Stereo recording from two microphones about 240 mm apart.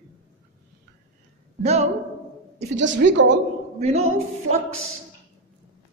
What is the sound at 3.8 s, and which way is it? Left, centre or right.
Speech, right.